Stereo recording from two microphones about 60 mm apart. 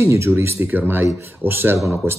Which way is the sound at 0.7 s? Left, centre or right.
Right.